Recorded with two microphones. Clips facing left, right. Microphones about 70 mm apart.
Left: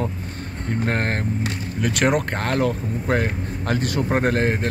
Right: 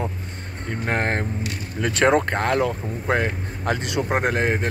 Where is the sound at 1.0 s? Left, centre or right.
Right.